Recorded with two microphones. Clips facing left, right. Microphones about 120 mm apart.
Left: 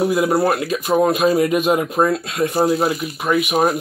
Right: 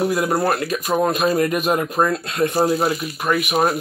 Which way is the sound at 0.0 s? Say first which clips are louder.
Left 3 dB; 15° left (ahead or behind).